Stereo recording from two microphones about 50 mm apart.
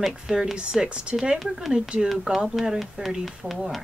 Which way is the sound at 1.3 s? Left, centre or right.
Centre.